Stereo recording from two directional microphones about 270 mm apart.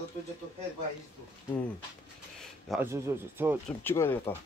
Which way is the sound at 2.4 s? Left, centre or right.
Centre.